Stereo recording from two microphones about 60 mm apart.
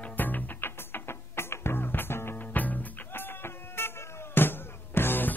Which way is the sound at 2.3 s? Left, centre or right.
Left.